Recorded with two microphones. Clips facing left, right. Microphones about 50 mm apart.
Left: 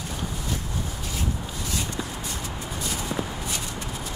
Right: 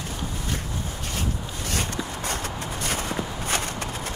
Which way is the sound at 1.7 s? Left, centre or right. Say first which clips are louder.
Right 3 dB; right.